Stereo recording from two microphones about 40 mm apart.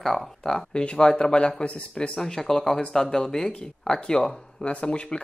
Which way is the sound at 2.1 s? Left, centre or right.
Centre.